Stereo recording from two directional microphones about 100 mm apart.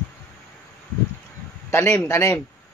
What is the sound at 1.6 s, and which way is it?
Speech, 30° left (ahead or behind).